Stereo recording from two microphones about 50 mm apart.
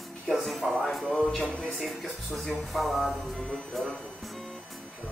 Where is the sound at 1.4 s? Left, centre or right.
Left.